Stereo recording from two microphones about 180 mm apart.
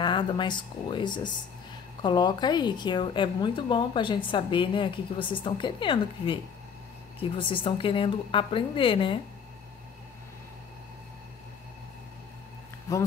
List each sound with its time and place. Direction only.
0.0 s a woman's voice: 25° left (ahead or behind)
12.9 s speech: 15° left (ahead or behind)